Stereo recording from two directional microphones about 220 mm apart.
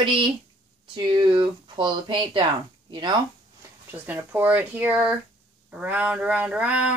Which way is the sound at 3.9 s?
10° right (ahead or behind).